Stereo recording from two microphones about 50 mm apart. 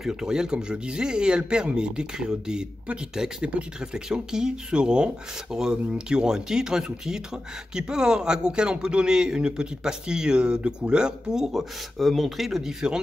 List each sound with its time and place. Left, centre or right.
0.0 s speech: centre
12.0 s speech: centre